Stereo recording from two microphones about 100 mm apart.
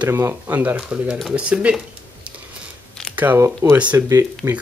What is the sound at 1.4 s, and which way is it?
Speech, 10° right (ahead or behind).